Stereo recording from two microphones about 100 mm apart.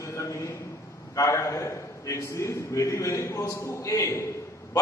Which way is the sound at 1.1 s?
30° left (ahead or behind).